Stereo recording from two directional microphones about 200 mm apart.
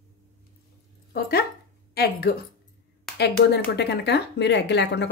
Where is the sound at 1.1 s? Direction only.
50° left (ahead or behind).